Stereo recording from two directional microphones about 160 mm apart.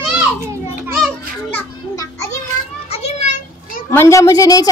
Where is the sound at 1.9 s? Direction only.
20° left (ahead or behind).